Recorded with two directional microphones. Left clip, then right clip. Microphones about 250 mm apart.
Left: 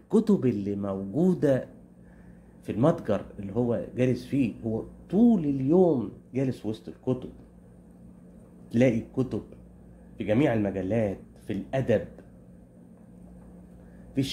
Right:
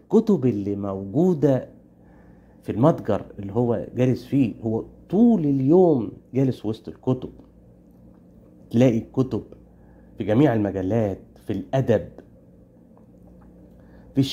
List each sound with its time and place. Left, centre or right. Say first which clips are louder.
0.1 s speech: right 5 dB; centre
2.6 s speech: right 5 dB; centre
8.6 s a man's voice: right 4 dB; right
14.2 s a woman's voice: right 6 dB; right